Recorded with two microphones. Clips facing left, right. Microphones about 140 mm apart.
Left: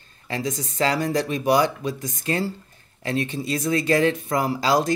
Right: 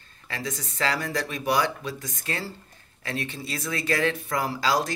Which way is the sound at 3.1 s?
20° left (ahead or behind).